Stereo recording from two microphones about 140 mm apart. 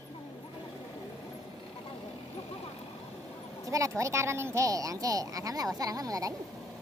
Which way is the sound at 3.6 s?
20° right (ahead or behind).